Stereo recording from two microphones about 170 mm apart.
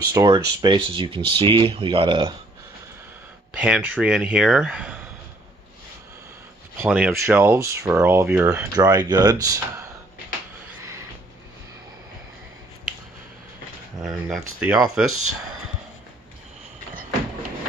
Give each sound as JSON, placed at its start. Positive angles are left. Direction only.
{"t": 0.1, "sound": "speech", "side_deg": -20}
{"t": 3.5, "sound": "speech", "side_deg": -5}
{"t": 6.8, "sound": "speech", "side_deg": -10}
{"t": 14.0, "sound": "speech", "side_deg": 0}